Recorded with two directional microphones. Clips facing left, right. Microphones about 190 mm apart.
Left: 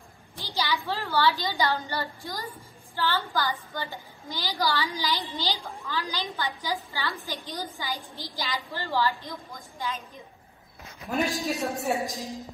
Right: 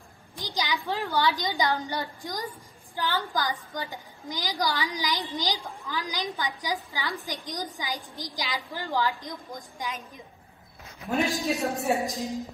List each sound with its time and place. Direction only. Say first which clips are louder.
0.4 s a sound: left 1 dB; 15° right (ahead or behind)
0.8 s a woman's voice: even; 15° right (ahead or behind)
11.1 s a woman's voice: right 1 dB; centre (ahead or behind)